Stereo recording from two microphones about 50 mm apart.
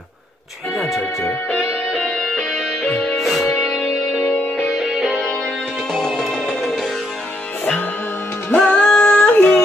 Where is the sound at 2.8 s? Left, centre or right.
Centre.